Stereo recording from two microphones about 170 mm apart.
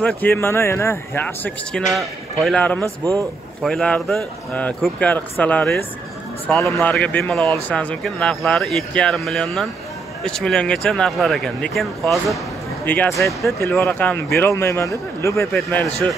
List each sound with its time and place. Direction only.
0.0 s speech: 10° left (ahead or behind)
2.8 s a man's voice: 20° right (ahead or behind)
3.6 s speech: 5° left (ahead or behind)
15.5 s speech: 5° left (ahead or behind)